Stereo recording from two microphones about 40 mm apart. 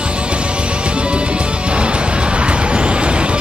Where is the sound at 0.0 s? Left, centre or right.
Right.